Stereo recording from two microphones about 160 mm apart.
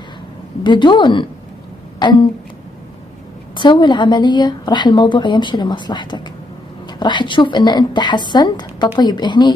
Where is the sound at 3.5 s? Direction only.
30° left (ahead or behind).